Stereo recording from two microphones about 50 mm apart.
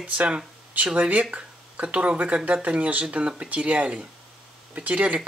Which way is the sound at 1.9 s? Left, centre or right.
Right.